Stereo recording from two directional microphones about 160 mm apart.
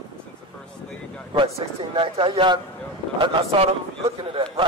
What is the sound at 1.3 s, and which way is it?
A man's voice, 35° right (ahead or behind).